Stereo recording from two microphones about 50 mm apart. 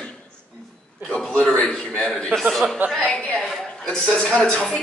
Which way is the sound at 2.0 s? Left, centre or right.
Centre.